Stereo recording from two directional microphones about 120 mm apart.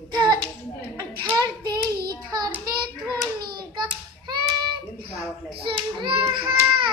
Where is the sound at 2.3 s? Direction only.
35° right (ahead or behind).